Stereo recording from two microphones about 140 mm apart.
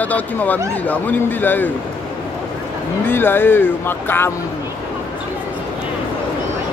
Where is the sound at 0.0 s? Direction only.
10° left (ahead or behind).